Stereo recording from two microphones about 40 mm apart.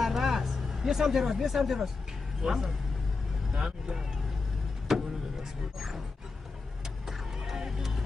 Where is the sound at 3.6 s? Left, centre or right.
Centre.